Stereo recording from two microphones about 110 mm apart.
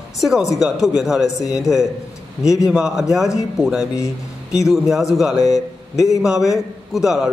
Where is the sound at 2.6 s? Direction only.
5° right (ahead or behind).